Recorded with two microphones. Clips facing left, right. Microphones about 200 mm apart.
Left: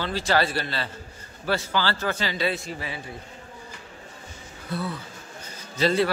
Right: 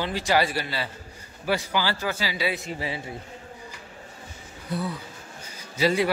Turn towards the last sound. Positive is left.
turn(degrees=-10)  # may be behind; listen again after turning